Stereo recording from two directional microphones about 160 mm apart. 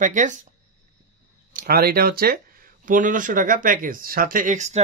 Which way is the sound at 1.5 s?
70° right (ahead or behind).